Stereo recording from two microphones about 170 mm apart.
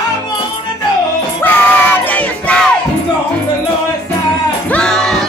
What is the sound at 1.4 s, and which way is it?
Music, 10° left (ahead or behind).